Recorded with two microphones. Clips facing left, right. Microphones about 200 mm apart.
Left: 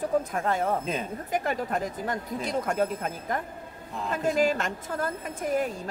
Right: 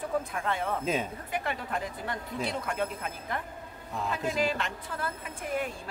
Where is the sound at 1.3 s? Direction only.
40° left (ahead or behind).